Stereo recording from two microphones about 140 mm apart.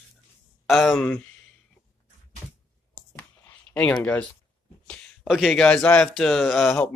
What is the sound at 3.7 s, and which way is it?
Speech, 10° left (ahead or behind).